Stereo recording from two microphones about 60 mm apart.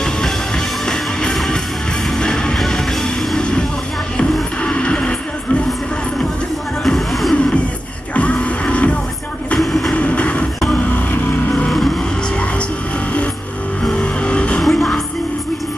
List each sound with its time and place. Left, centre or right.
0.8 s music: centre
3.3 s vehicle: centre
4.2 s music: centre
6.8 s music: centre
8.1 s music: left
9.6 s train: centre
9.9 s vehicle: left
13.9 s vehicle: centre
14.6 s music: centre